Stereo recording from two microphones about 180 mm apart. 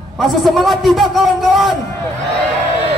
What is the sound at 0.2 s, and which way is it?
Music, centre (ahead or behind).